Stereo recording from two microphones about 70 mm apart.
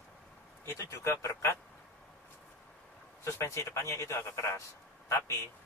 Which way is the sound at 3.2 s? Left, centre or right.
Left.